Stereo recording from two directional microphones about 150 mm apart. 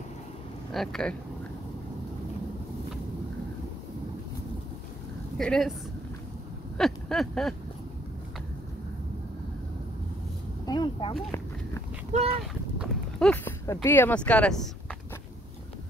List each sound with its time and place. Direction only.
0.7 s speech: 5° left (ahead or behind)
5.4 s a woman's voice: 5° left (ahead or behind)
6.8 s a sound: centre (ahead or behind)
10.6 s speech: 25° left (ahead or behind)
12.1 s speech: 40° right (ahead or behind)
12.7 s horse: 5° right (ahead or behind)
13.3 s speech: 15° left (ahead or behind)